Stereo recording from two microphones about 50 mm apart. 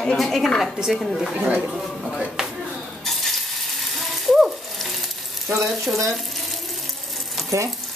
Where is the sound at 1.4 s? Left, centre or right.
Right.